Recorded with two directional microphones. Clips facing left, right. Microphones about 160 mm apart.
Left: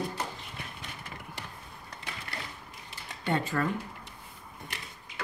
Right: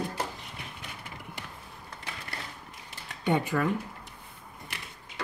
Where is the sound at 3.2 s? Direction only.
15° right (ahead or behind).